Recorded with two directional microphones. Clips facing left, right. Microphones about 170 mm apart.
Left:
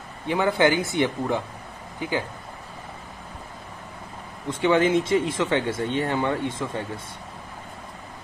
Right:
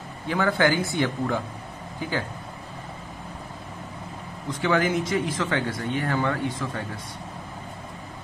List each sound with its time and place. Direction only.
0.3 s speech: 20° left (ahead or behind)
4.5 s speech: 25° left (ahead or behind)